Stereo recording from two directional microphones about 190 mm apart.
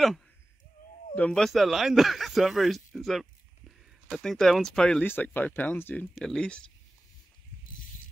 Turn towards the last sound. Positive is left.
turn(degrees=5)  # may be behind; listen again after turning